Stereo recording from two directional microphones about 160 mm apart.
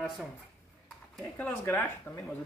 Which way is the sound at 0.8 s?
5° left (ahead or behind).